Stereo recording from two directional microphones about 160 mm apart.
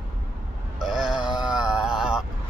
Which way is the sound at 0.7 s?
Centre (ahead or behind).